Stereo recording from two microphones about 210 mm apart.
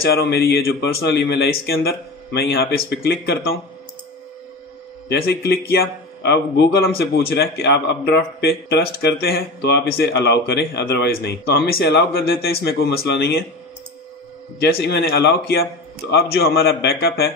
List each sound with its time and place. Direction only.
0.0 s a man's voice: 50° left (ahead or behind)
5.1 s a man's voice: 50° left (ahead or behind)
14.6 s a man's voice: 50° left (ahead or behind)